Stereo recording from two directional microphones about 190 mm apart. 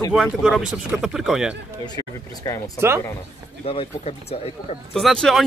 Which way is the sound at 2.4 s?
20° left (ahead or behind).